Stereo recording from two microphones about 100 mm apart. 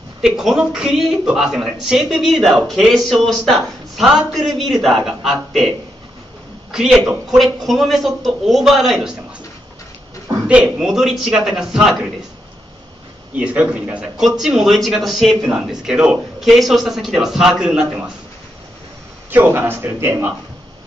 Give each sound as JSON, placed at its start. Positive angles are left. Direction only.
{"t": 0.2, "sound": "speech", "side_deg": -5}
{"t": 6.7, "sound": "a man's voice", "side_deg": -5}
{"t": 10.5, "sound": "speech", "side_deg": -5}
{"t": 13.4, "sound": "a man's voice", "side_deg": -15}
{"t": 19.3, "sound": "a man's voice", "side_deg": -15}